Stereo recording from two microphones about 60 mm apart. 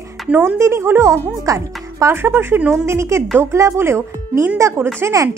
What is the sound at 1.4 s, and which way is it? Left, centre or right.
Speech, right.